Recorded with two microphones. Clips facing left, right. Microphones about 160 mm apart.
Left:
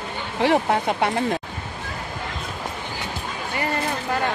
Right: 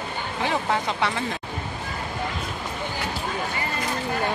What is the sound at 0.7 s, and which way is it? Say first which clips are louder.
Speech: left 3 dB; 50° left (ahead or behind).